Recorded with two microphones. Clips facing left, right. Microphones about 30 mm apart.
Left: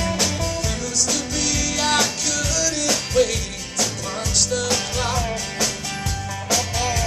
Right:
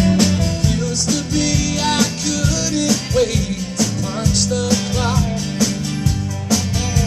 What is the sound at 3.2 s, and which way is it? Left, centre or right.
Music, centre.